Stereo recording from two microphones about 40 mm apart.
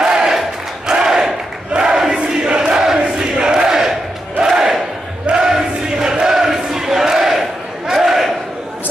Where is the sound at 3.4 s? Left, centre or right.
Right.